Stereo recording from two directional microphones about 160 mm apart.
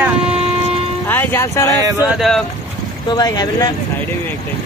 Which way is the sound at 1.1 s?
15° left (ahead or behind).